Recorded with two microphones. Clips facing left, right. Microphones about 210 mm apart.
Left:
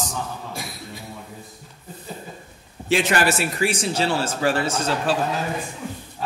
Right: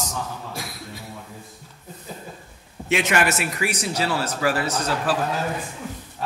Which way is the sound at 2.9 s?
35° left (ahead or behind).